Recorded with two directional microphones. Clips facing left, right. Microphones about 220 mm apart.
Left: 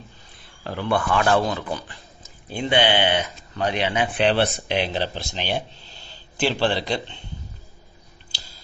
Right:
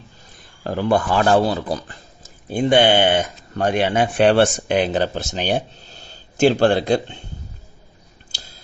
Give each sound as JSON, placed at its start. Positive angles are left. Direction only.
{"t": 0.7, "sound": "speech", "side_deg": -40}
{"t": 2.5, "sound": "speech", "side_deg": -45}